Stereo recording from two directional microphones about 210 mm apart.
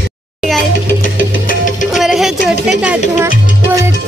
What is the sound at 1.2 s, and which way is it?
Music, 40° left (ahead or behind).